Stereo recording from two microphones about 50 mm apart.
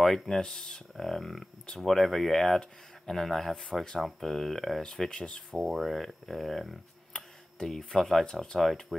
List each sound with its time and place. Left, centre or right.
0.0 s speech: centre
5.6 s speech: centre
7.1 s speech: centre